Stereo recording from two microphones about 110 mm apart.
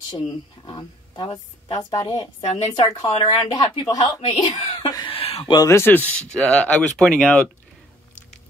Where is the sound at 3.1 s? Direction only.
70° left (ahead or behind).